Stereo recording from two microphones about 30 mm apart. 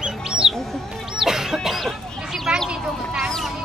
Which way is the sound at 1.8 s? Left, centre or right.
Centre.